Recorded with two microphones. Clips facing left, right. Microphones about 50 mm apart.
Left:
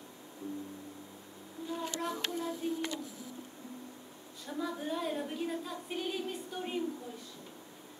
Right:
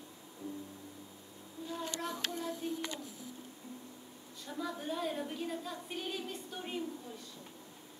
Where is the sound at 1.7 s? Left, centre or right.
Centre.